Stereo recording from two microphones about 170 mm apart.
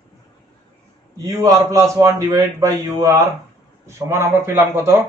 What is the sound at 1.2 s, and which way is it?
A man's voice, 20° right (ahead or behind).